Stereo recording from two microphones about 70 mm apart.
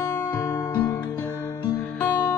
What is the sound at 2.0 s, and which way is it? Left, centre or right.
Music, left.